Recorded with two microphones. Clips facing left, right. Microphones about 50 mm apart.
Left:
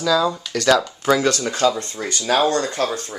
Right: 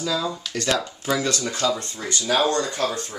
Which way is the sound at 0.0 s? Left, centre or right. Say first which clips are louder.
Left 7 dB; left.